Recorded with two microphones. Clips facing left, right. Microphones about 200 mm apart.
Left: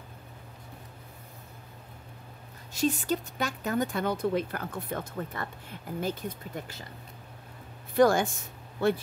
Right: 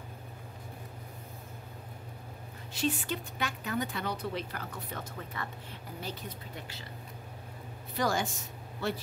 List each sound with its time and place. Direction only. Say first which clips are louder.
2.7 s speech: left 5 dB; 45° left (ahead or behind)
7.9 s speech: left 9 dB; 55° left (ahead or behind)